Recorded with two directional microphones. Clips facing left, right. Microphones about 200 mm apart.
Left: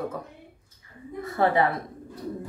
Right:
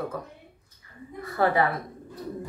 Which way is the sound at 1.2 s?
25° left (ahead or behind).